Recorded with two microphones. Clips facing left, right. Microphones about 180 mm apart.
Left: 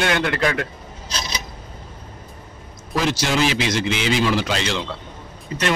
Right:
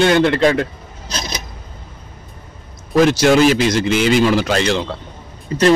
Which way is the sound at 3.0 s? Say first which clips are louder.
Right 9 dB; 55° right (ahead or behind).